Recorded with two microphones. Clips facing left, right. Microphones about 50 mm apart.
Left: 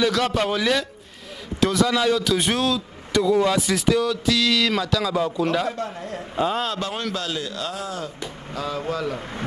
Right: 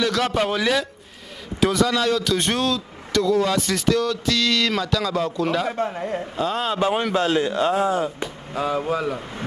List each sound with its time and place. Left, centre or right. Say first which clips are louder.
0.0 s speech: even; centre
5.7 s speech: right 4 dB; right